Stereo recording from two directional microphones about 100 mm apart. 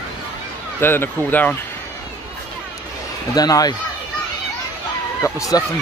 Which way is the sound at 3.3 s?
40° left (ahead or behind).